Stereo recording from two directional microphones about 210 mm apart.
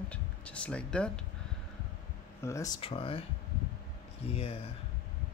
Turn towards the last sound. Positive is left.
turn(degrees=25)  # may be behind; listen again after turning